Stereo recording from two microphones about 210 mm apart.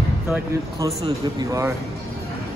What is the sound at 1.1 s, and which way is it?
Speech, 15° right (ahead or behind).